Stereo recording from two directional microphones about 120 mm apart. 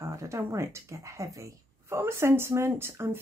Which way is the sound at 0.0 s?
25° right (ahead or behind).